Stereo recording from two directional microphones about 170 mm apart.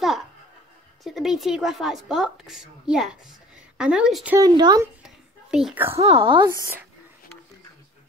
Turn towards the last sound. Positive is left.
turn(degrees=-30)  # may be behind; listen again after turning